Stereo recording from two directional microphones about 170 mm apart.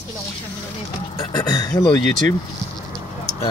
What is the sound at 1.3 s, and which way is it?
Speech, 20° left (ahead or behind).